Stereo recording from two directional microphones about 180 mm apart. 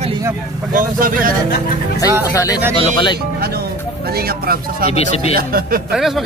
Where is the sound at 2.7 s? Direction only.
30° left (ahead or behind).